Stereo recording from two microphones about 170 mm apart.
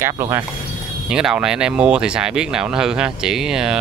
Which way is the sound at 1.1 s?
5° right (ahead or behind).